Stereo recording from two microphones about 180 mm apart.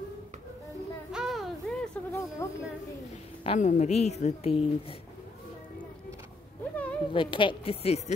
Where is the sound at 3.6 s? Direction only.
40° left (ahead or behind).